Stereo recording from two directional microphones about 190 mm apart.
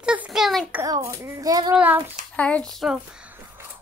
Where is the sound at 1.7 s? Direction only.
10° right (ahead or behind).